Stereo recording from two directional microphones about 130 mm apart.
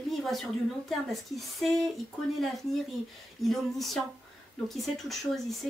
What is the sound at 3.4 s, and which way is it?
Speech, centre (ahead or behind).